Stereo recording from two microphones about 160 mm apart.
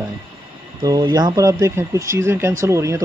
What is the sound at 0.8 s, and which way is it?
Speech, 25° right (ahead or behind).